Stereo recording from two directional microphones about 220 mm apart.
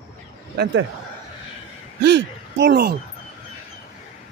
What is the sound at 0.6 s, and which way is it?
Speech, 55° right (ahead or behind).